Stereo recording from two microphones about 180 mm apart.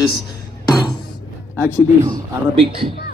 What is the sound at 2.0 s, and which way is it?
Speech, 30° right (ahead or behind).